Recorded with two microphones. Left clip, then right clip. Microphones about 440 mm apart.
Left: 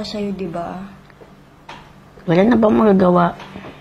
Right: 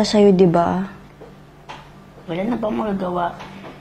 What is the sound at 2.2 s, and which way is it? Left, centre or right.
Speech, left.